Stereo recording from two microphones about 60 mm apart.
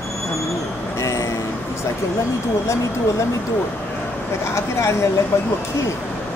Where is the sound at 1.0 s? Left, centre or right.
Left.